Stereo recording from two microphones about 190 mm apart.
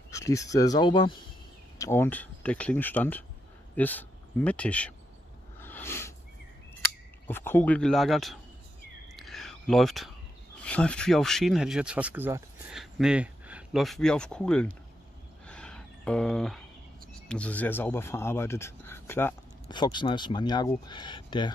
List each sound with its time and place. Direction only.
0.1 s speech: 15° left (ahead or behind)
1.8 s speech: 15° left (ahead or behind)
5.6 s a sound: 10° left (ahead or behind)
7.2 s speech: 10° left (ahead or behind)
9.1 s whispering: centre (ahead or behind)
10.6 s speech: 5° left (ahead or behind)
15.4 s a sound: 5° left (ahead or behind)
17.3 s speech: 5° left (ahead or behind)
19.7 s speech: 25° left (ahead or behind)